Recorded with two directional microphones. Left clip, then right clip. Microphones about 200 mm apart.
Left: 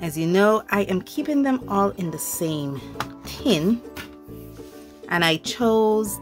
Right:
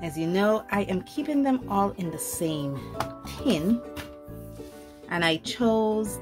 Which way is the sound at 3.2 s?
30° left (ahead or behind).